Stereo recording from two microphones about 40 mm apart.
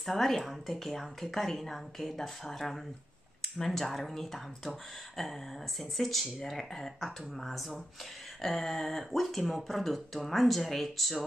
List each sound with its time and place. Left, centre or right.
0.0 s speech: centre